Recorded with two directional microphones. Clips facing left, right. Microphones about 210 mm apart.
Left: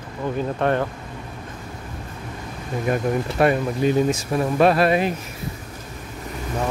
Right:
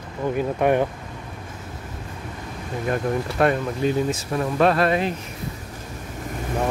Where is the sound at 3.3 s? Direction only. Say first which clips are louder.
Left 2 dB; 10° left (ahead or behind).